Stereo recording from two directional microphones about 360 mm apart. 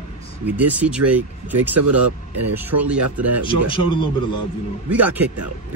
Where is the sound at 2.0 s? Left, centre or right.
Right.